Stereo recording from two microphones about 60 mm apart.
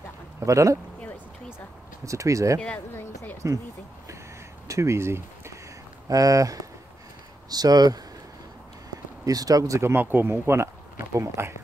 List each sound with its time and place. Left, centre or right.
0.5 s speech: right
2.0 s speech: right
4.6 s a sound: right
6.0 s speech: right
7.4 s speech: right
9.2 s speech: right
9.9 s speech: right